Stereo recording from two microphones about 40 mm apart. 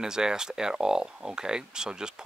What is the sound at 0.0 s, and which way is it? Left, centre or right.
Speech, centre.